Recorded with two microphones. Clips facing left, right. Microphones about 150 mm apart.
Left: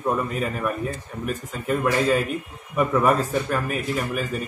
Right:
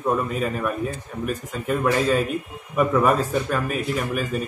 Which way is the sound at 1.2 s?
Centre (ahead or behind).